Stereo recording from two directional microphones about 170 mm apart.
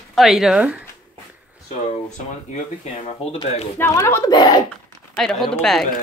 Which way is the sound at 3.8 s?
15° left (ahead or behind).